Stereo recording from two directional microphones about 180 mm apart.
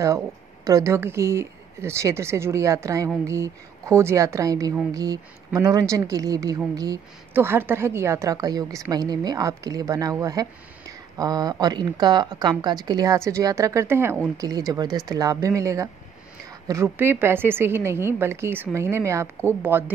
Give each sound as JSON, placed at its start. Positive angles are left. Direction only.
{"t": 0.7, "sound": "a woman's voice", "side_deg": -15}